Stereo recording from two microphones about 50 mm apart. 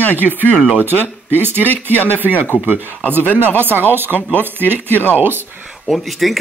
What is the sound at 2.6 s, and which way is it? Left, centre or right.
Speech, right.